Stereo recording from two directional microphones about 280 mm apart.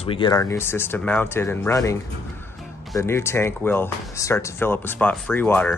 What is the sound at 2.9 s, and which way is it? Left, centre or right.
Speech, centre.